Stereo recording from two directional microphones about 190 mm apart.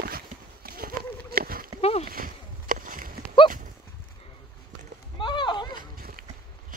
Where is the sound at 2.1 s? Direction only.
50° right (ahead or behind).